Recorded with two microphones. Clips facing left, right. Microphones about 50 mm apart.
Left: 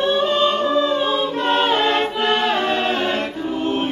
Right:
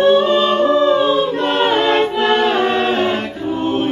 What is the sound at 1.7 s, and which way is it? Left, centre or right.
Music, right.